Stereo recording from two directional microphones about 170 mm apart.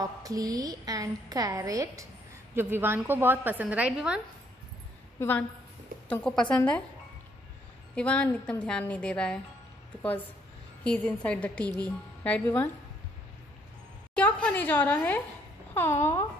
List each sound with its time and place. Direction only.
0.0 s a woman's voice: 20° right (ahead or behind)
6.0 s a woman's voice: 5° left (ahead or behind)
7.9 s a woman's voice: 5° left (ahead or behind)
10.8 s a woman's voice: 5° left (ahead or behind)
11.6 s a woman's voice: 25° right (ahead or behind)
12.2 s speech: 10° left (ahead or behind)
14.1 s a woman's voice: 10° left (ahead or behind)